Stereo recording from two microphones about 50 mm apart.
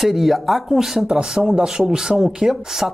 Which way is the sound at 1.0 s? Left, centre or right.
Centre.